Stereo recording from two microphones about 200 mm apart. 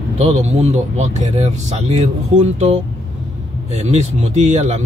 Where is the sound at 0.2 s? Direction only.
35° right (ahead or behind).